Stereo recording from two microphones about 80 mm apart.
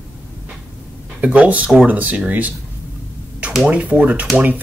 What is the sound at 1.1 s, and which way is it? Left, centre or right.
Speech, centre.